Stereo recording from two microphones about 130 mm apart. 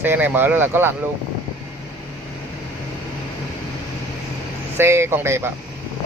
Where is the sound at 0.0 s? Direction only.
15° right (ahead or behind).